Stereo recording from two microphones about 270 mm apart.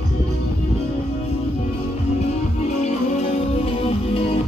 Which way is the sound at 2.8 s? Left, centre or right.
Left.